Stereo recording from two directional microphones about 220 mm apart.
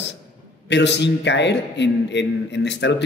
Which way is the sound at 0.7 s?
50° left (ahead or behind).